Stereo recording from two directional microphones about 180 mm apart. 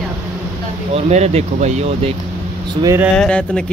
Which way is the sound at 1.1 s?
35° right (ahead or behind).